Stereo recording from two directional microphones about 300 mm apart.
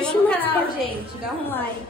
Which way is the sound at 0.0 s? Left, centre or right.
Centre.